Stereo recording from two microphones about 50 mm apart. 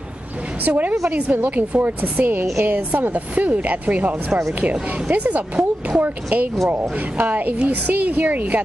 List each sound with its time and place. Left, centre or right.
0.7 s a woman's voice: right